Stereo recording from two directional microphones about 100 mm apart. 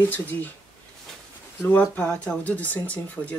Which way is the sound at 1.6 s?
15° left (ahead or behind).